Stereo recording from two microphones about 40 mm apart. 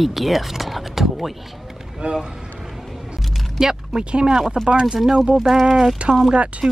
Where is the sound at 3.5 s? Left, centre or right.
Centre.